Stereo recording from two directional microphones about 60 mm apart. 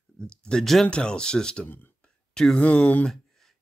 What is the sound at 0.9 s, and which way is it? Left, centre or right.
Speech, centre.